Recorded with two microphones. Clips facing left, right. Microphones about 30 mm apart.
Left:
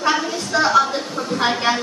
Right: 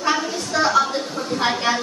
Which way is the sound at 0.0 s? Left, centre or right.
Centre.